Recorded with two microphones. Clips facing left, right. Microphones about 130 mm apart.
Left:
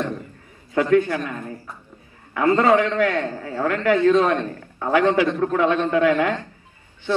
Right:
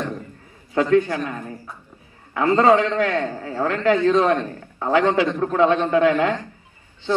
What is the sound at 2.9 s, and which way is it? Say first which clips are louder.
A man's voice: even; 25° right (ahead or behind).